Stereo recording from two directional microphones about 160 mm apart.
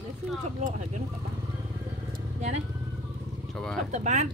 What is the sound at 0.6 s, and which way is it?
Speech, 45° right (ahead or behind).